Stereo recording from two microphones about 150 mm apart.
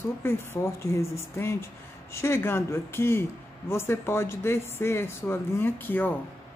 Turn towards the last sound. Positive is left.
turn(degrees=15)  # may be behind; listen again after turning